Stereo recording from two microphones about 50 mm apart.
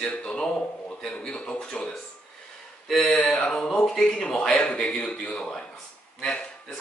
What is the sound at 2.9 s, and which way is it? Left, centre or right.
Mantra, centre.